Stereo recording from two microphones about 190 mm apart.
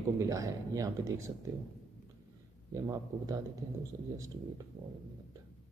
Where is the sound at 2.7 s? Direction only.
20° right (ahead or behind).